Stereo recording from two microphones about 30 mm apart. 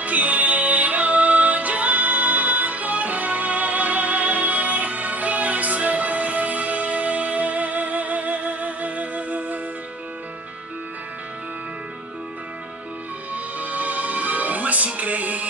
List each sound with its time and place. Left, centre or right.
0.0 s music: right
2.0 s music: right
13.3 s music: right